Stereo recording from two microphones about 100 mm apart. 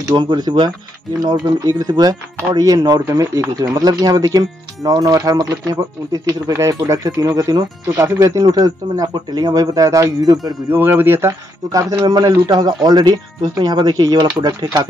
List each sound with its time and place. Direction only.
0.1 s speech: 45° right (ahead or behind)
1.2 s speech: 35° right (ahead or behind)
10.7 s speech: 20° right (ahead or behind)
12.1 s speech: 40° right (ahead or behind)